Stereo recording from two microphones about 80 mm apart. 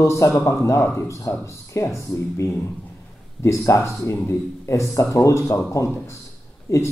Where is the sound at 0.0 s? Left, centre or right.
Left.